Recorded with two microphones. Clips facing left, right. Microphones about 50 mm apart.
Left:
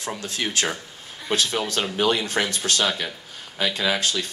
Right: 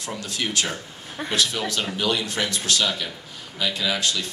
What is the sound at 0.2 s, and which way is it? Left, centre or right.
Speech, left.